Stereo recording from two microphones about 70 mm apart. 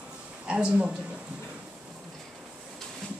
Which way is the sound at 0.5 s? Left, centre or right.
Centre.